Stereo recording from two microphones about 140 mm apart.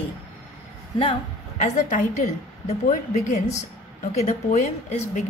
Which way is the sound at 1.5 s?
60° left (ahead or behind).